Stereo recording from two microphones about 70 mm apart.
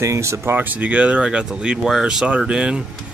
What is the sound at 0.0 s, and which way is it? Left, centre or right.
Speech, right.